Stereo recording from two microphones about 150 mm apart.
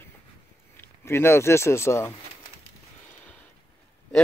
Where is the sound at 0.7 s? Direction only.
15° left (ahead or behind).